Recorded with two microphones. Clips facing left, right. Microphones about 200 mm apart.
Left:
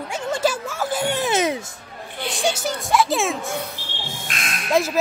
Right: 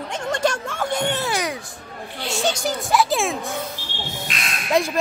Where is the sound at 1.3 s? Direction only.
25° left (ahead or behind).